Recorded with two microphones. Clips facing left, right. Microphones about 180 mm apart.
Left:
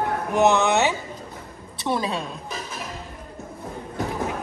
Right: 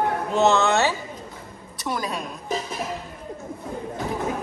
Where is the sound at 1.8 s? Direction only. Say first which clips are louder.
Left 3 dB; 25° left (ahead or behind).